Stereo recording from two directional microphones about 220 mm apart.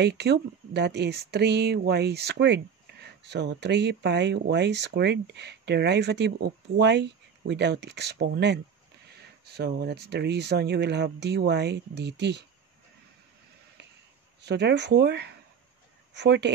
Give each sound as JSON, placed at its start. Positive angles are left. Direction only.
{"t": 0.0, "sound": "speech", "side_deg": -50}
{"t": 14.4, "sound": "speech", "side_deg": -50}